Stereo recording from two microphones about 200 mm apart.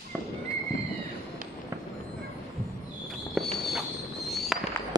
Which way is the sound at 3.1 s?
Centre (ahead or behind).